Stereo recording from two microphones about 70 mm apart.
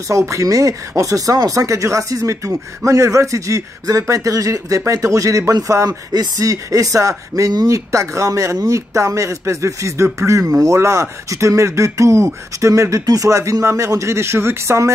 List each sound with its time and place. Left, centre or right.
0.1 s speech: right
5.9 s speech: right
13.3 s speech: right